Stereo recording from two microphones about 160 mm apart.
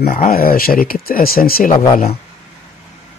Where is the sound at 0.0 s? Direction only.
65° left (ahead or behind).